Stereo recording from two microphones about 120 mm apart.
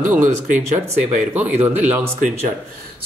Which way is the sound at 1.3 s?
15° right (ahead or behind).